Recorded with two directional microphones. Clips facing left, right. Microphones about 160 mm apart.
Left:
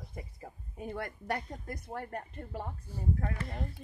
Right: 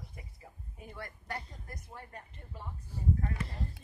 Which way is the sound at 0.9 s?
70° left (ahead or behind).